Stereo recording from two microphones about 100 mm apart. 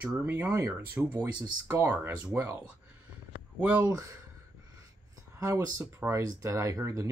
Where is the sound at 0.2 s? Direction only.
25° right (ahead or behind).